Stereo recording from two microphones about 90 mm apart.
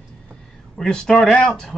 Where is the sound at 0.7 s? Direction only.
10° left (ahead or behind).